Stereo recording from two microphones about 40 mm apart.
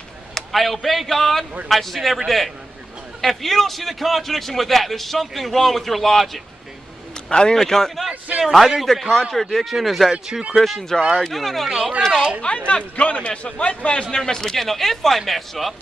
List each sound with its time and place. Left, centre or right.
0.3 s a man's voice: centre
7.2 s a man's voice: left
7.5 s speech: centre
8.5 s a man's voice: centre
8.8 s a man's voice: centre
12.4 s a man's voice: left
14.1 s speech: centre